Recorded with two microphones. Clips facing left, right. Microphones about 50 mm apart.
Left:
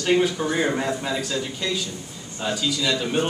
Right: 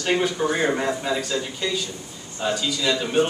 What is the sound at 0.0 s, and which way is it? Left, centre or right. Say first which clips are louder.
A man's voice: left 1 dB; centre.